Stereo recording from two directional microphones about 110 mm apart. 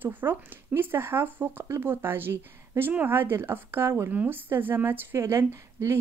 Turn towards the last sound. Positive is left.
turn(degrees=-25)  # may be behind; listen again after turning